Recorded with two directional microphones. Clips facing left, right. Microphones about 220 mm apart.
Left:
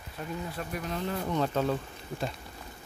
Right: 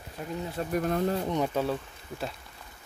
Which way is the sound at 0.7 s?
45° right (ahead or behind).